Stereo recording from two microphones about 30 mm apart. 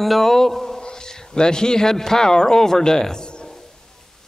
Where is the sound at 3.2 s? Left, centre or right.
Left.